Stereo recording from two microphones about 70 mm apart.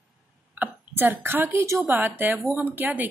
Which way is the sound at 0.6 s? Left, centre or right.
Right.